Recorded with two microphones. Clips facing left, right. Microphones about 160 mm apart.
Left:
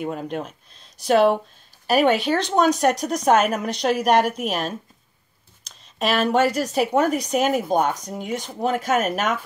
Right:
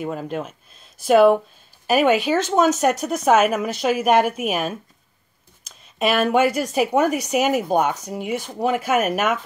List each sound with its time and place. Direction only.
0.0 s speech: centre (ahead or behind)